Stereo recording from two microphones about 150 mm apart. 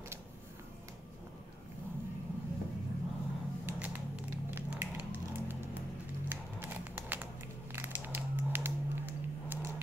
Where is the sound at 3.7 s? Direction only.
10° right (ahead or behind).